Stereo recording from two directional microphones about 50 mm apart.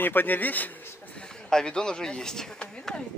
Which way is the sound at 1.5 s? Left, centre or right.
Centre.